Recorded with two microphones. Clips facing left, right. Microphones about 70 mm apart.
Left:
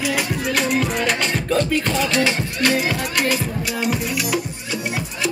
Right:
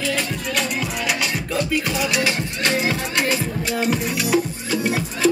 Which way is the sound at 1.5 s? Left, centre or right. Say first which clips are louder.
Left 1 dB; centre.